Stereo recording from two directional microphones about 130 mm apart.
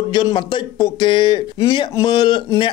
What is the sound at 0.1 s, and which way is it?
Speech, 35° left (ahead or behind).